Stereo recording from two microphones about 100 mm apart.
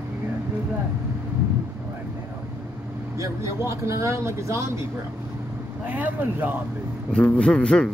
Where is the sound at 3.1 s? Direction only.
30° right (ahead or behind).